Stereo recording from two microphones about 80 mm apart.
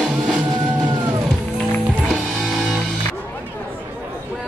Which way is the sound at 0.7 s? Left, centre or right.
Right.